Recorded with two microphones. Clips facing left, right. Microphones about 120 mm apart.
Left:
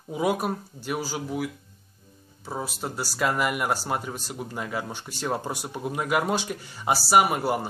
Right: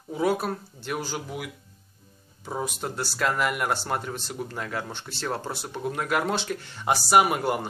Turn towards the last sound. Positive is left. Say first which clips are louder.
# even
turn(degrees=0)  # may be behind; listen again after turning